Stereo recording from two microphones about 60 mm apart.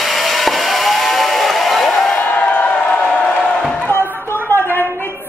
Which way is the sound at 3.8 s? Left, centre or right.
Left.